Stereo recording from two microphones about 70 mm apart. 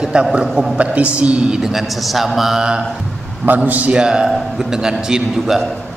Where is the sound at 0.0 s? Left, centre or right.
Centre.